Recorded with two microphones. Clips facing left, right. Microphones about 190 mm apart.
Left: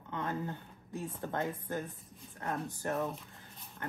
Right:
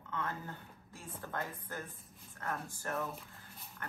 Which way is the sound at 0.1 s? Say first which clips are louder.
Left 4 dB; 20° left (ahead or behind).